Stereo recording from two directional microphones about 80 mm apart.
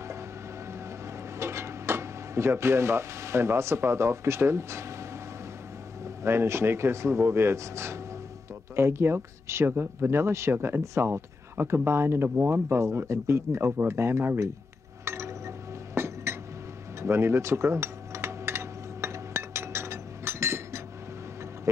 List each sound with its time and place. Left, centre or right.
1.4 s speech: right
6.0 s speech: right
15.0 s chink: right
17.0 s cutlery: right